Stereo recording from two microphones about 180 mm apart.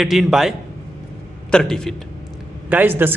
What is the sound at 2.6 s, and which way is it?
Speech, 10° right (ahead or behind).